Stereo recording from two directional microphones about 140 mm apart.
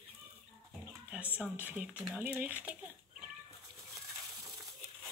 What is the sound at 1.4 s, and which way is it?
Speech, 10° right (ahead or behind).